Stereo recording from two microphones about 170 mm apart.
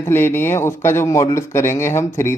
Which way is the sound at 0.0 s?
15° left (ahead or behind).